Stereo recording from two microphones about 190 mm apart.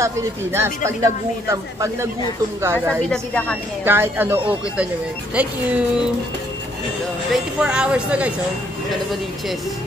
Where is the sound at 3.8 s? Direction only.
10° right (ahead or behind).